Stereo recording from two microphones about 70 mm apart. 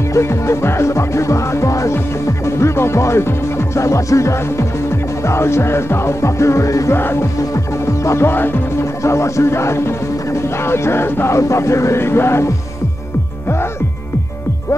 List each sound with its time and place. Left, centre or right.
0.1 s music: left
5.2 s speech: left
7.0 s speech: left
7.5 s music: left
8.3 s speech: left
9.0 s speech: left